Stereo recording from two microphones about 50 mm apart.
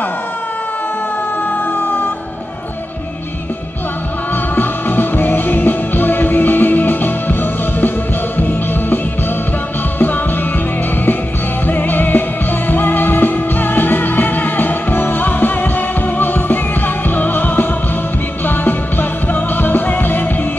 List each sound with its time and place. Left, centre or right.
4.6 s music: left
8.4 s music: left
11.6 s music: left